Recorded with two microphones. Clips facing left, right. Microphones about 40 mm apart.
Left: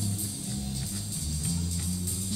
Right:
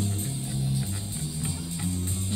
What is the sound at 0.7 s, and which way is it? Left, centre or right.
Music, right.